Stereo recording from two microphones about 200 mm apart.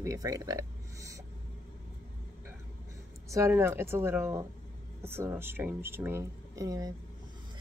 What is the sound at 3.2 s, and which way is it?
Speech, 15° right (ahead or behind).